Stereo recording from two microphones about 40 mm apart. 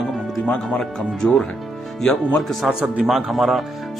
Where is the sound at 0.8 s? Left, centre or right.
Centre.